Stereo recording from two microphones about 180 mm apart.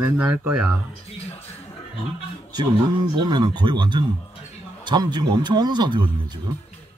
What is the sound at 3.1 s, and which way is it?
Speech, 25° right (ahead or behind).